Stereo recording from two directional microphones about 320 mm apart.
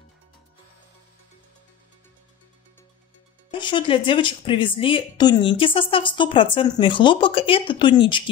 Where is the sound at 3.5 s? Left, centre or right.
Centre.